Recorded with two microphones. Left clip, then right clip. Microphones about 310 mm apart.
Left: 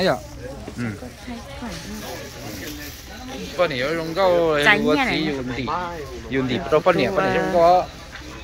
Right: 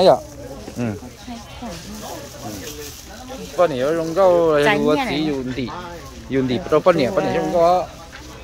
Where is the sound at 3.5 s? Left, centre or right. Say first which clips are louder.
Right 4 dB; right.